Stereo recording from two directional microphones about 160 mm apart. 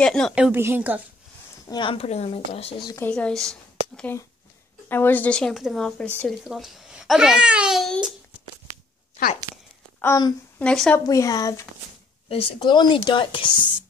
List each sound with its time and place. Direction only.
0.0 s a woman's voice: 5° left (ahead or behind)
1.7 s a woman's voice: 30° left (ahead or behind)
3.1 s a woman's voice: 5° left (ahead or behind)
9.9 s speech: 20° left (ahead or behind)
10.6 s a woman's voice: 5° left (ahead or behind)
11.1 s speech: 20° left (ahead or behind)
12.3 s a woman's voice: 35° left (ahead or behind)